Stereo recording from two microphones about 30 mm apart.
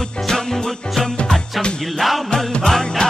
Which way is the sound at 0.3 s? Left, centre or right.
Centre.